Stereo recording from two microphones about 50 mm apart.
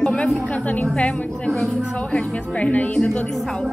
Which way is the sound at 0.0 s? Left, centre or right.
Centre.